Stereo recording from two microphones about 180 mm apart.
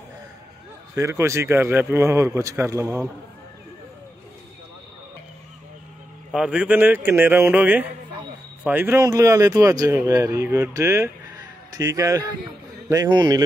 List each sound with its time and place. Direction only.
0.9 s speech: 15° right (ahead or behind)
6.3 s a man's voice: 5° right (ahead or behind); by 13.4 s 20° right (ahead or behind)